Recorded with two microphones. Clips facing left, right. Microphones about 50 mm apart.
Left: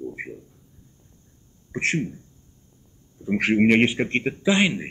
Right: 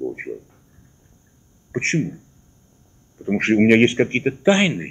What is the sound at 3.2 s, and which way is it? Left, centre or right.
Speech, right.